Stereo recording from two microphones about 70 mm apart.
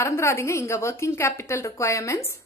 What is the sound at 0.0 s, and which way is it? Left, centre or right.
A woman's voice, left.